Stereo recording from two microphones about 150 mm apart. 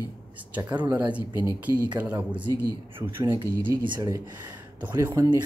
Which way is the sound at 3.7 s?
20° right (ahead or behind).